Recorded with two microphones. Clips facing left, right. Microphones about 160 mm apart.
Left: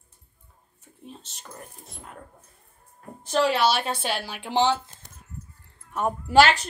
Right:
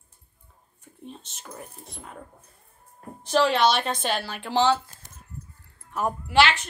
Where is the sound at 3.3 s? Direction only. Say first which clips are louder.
Right 1 dB; 5° left (ahead or behind).